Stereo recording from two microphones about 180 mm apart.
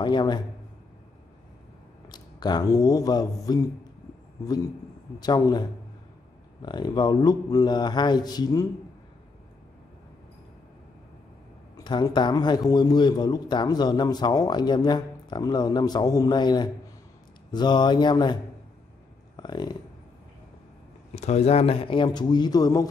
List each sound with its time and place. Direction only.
0.0 s a man's voice: 25° left (ahead or behind)
2.0 s speech: 25° left (ahead or behind)
5.2 s a man's voice: 20° left (ahead or behind)
11.8 s a man's voice: 25° left (ahead or behind)
19.3 s a sound: 25° left (ahead or behind)
21.1 s a man's voice: 40° left (ahead or behind); by 22.8 s 20° left (ahead or behind)